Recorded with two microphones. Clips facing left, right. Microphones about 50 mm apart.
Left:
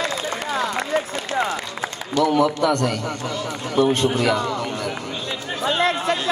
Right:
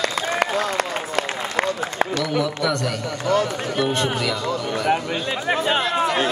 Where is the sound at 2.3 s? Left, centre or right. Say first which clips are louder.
Left 4 dB; left.